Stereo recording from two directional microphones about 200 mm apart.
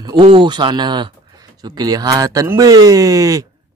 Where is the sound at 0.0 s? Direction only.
25° right (ahead or behind).